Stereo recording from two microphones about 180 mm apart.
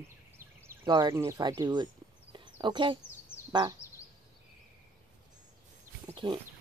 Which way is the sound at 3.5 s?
20° right (ahead or behind).